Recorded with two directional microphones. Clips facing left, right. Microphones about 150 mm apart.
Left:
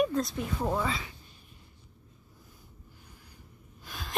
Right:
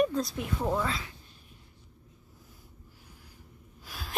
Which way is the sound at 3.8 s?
5° right (ahead or behind).